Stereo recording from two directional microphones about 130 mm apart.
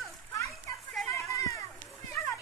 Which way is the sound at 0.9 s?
Centre (ahead or behind).